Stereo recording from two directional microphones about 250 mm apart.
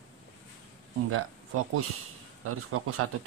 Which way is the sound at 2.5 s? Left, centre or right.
Right.